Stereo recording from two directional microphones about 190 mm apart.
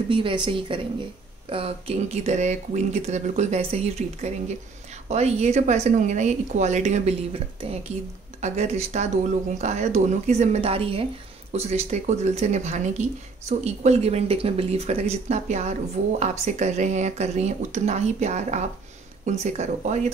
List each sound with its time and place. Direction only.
0.1 s a woman's voice: 25° right (ahead or behind)